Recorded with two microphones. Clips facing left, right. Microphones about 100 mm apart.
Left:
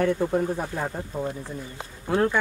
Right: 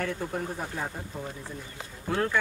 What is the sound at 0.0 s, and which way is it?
Speech, 25° left (ahead or behind).